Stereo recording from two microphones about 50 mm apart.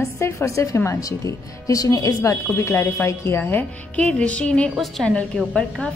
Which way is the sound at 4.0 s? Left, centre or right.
Left.